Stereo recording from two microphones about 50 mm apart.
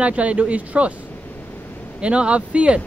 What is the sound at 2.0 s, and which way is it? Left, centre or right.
Speech, right.